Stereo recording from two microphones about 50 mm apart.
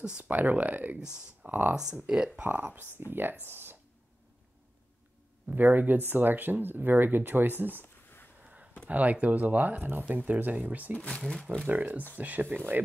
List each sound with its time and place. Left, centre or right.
0.2 s speech: right
0.9 s speech: centre
1.5 s speech: right
1.8 s speech: centre
2.4 s speech: right
5.5 s speech: right
7.8 s a sound: left
8.8 s speech: right
11.1 s speech: centre
11.6 s speech: right